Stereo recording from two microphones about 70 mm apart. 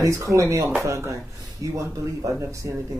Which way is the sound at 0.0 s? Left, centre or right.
Right.